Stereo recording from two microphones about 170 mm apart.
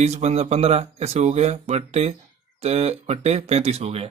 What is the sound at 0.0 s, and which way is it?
Speech, 40° right (ahead or behind).